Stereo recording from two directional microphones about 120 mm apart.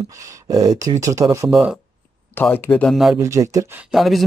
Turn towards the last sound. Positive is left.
turn(degrees=0)  # may be behind; listen again after turning